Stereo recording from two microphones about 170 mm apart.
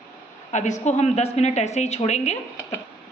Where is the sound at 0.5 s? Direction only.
45° left (ahead or behind).